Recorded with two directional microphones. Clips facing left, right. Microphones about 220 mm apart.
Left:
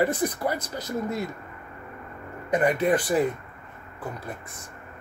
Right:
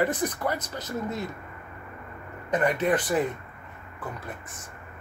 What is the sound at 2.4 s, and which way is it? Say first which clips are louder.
Speech: left 2 dB; 10° left (ahead or behind).